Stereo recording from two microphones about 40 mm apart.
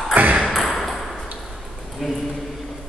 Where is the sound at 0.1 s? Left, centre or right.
Right.